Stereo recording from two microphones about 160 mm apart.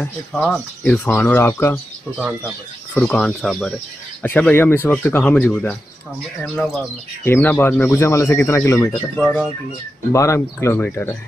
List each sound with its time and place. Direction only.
0.0 s speech: 5° left (ahead or behind)
7.2 s speech: 10° left (ahead or behind)